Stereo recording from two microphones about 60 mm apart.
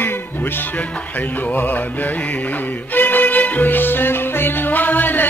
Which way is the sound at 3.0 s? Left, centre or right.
Left.